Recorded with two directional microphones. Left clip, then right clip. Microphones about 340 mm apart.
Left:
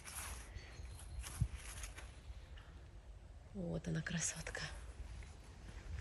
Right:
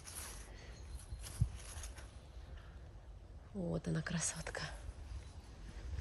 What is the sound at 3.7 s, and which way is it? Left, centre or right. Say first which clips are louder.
Speech: right 2 dB; centre.